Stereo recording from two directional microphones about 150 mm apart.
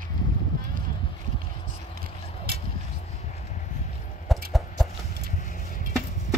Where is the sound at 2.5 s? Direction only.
90° right.